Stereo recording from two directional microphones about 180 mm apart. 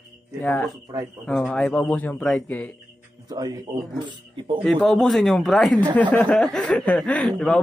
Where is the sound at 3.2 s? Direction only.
20° right (ahead or behind).